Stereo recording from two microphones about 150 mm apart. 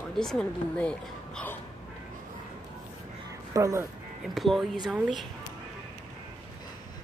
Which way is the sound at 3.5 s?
20° right (ahead or behind).